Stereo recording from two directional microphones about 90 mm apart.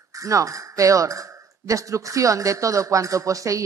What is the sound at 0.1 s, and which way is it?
Speech, 35° right (ahead or behind).